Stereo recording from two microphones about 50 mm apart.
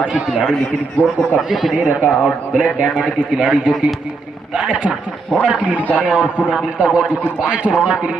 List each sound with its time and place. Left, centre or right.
0.4 s a man's voice: centre
1.5 s speech: centre
2.0 s a man's voice: centre